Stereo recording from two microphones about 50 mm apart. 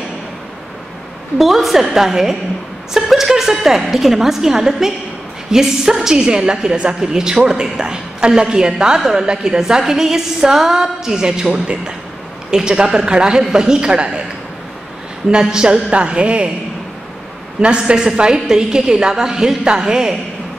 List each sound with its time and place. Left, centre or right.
1.4 s a woman's voice: centre
15.3 s a man's voice: centre
17.6 s a woman's voice: centre